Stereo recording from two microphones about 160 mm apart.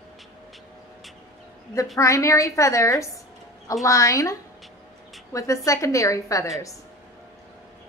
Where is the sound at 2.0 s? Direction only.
20° left (ahead or behind).